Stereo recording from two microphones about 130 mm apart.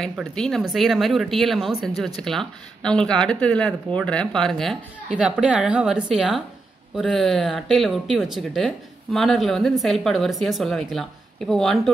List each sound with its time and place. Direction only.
0.0 s speech: 5° left (ahead or behind)
5.1 s a woman's voice: 10° right (ahead or behind)